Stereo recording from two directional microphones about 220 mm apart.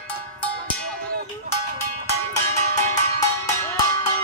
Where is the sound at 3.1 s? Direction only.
15° left (ahead or behind).